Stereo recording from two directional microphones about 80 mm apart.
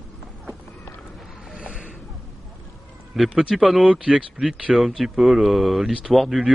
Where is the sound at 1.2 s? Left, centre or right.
Centre.